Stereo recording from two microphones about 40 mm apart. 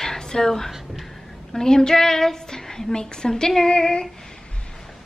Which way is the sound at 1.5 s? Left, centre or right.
Centre.